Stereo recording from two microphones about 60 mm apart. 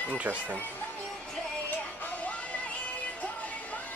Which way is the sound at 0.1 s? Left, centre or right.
Right.